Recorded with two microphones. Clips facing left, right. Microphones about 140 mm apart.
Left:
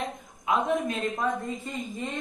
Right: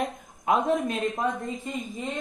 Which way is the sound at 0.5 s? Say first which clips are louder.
Right 3 dB; 45° right (ahead or behind).